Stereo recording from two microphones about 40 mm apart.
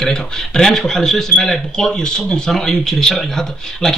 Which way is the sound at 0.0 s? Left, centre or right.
Centre.